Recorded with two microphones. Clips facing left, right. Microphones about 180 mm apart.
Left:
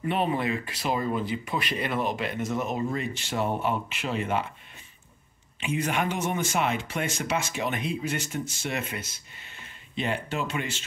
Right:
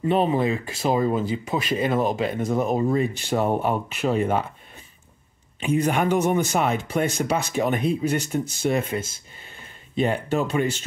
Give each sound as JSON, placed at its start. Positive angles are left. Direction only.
{"t": 0.0, "sound": "speech", "side_deg": -30}
{"t": 5.6, "sound": "speech", "side_deg": -40}
{"t": 9.9, "sound": "speech", "side_deg": -40}